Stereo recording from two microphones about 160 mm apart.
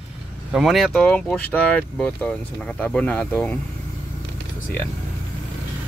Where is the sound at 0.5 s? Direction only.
Centre (ahead or behind).